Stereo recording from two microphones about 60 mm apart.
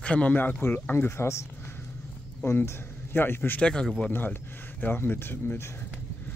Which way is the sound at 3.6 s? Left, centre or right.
Centre.